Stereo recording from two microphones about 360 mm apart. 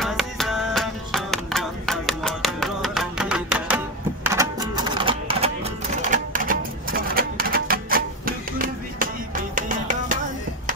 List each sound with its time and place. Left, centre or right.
0.0 s music: centre; by 10.1 s right